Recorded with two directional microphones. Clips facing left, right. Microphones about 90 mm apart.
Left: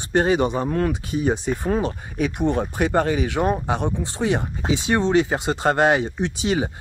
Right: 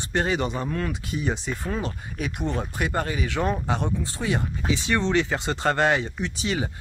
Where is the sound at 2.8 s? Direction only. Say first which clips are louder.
Left 7 dB; 30° left (ahead or behind).